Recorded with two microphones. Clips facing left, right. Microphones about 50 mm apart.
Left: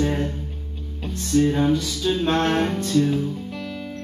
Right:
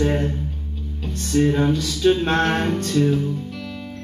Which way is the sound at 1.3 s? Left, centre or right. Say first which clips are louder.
Even; right.